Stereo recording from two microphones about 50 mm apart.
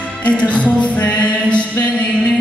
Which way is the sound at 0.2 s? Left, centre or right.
Left.